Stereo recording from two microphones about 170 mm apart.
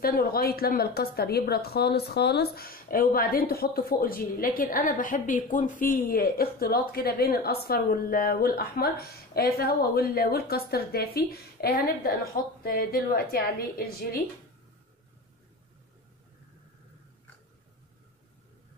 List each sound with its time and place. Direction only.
0.0 s a woman's voice: 60° left (ahead or behind)